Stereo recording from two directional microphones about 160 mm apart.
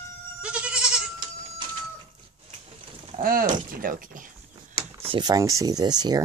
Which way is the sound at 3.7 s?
60° right (ahead or behind).